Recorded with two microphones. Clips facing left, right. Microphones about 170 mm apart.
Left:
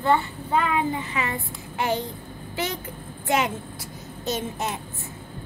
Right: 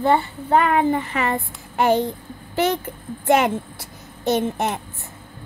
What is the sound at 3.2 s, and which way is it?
A child's voice, 60° right (ahead or behind).